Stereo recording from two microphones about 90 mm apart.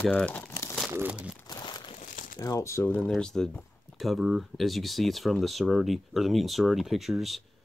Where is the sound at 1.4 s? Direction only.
50° left (ahead or behind).